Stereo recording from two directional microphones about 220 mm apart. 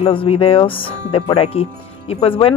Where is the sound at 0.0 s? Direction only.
25° left (ahead or behind).